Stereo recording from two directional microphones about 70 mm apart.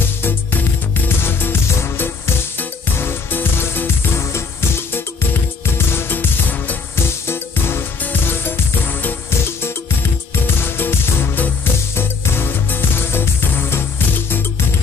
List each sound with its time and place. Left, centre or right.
0.2 s music: left